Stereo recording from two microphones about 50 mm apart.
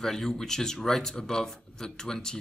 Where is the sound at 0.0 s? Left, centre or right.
Centre.